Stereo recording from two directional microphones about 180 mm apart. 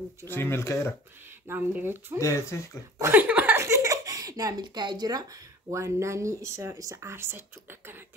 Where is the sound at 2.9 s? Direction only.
15° right (ahead or behind).